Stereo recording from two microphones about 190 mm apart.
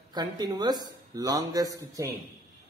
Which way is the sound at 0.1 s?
20° right (ahead or behind).